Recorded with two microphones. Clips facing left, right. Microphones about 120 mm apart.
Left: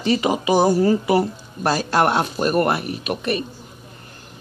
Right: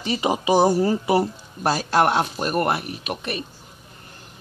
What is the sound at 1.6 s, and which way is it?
Speech, 5° right (ahead or behind).